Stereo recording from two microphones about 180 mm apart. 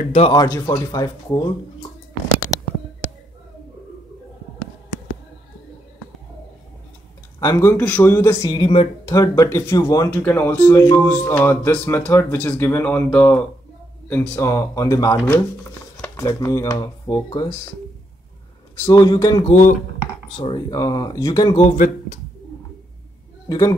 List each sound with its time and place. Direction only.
0.1 s speech: 35° left (ahead or behind)
0.4 s speech: 20° left (ahead or behind)
7.3 s speech: 20° left (ahead or behind)
10.1 s speech: 10° left (ahead or behind)
18.9 s speech: 20° left (ahead or behind)
19.4 s speech: 45° left (ahead or behind)
20.3 s speech: 30° left (ahead or behind)
20.7 s speech: 20° left (ahead or behind)
21.5 s speech: 45° left (ahead or behind)
23.5 s speech: 20° left (ahead or behind)